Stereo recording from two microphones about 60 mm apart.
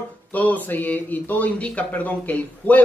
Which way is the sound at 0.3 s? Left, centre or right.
Left.